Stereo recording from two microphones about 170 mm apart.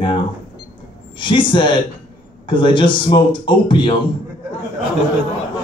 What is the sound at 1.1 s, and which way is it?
A man's voice, 30° left (ahead or behind).